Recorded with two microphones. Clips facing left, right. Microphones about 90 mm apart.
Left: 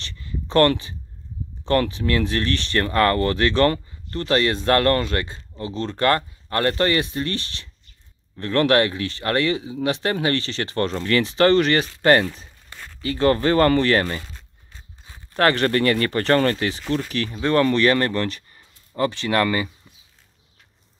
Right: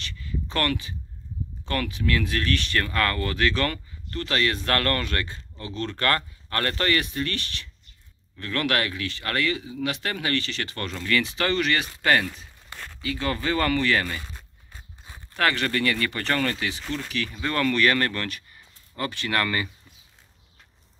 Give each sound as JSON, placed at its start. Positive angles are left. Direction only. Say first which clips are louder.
{"t": 0.0, "sound": "a sound", "louder": "even", "side_deg": 30}
{"t": 1.7, "sound": "speech", "louder": "left 6 dB", "side_deg": 30}
{"t": 15.3, "sound": "speech", "louder": "left 6 dB", "side_deg": 40}